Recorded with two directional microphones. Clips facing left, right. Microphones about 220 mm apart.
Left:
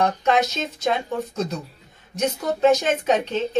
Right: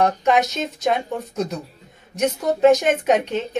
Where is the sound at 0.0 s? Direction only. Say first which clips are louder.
Right 2 dB; 10° right (ahead or behind).